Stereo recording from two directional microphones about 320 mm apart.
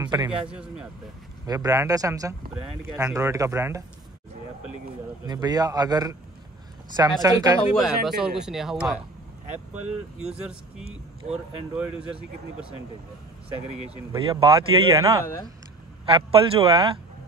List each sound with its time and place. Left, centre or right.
0.0 s speech: centre
5.2 s speech: centre
14.1 s speech: centre